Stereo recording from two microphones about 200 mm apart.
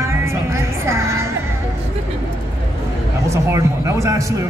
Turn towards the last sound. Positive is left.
turn(degrees=-15)  # may be behind; listen again after turning